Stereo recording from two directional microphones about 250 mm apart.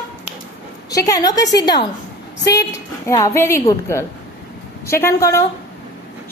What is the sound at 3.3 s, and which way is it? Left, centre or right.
A woman's voice, centre.